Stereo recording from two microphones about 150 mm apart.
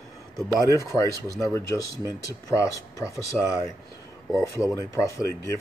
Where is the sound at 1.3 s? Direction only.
20° left (ahead or behind).